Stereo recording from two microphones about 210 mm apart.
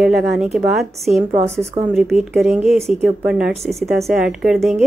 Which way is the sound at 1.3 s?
30° right (ahead or behind).